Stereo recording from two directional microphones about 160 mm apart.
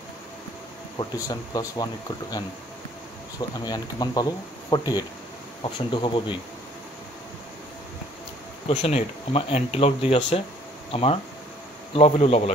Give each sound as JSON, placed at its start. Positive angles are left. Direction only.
{"t": 0.9, "sound": "speech", "side_deg": 20}
{"t": 3.6, "sound": "speech", "side_deg": 25}
{"t": 8.6, "sound": "speech", "side_deg": 40}